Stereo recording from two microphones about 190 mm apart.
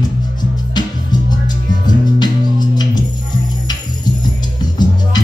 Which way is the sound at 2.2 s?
20° left (ahead or behind).